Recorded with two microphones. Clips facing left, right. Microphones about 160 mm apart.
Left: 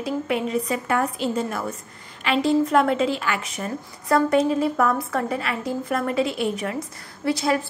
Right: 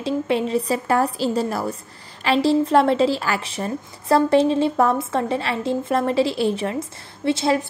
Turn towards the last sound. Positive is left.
turn(degrees=-25)  # may be behind; listen again after turning